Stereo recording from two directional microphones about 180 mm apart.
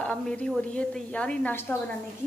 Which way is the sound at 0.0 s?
5° left (ahead or behind).